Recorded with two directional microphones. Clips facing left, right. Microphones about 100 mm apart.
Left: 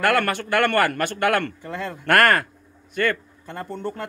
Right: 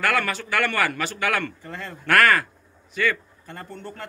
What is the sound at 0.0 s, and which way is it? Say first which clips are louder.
A man's voice: left 4 dB; 60° left (ahead or behind).